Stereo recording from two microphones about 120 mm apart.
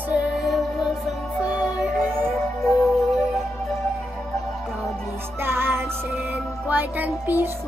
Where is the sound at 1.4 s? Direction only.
30° left (ahead or behind).